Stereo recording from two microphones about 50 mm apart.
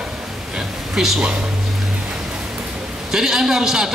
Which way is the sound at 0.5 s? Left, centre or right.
Centre.